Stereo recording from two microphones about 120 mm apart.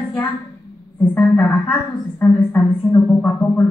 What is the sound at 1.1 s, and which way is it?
A woman's voice, 15° left (ahead or behind).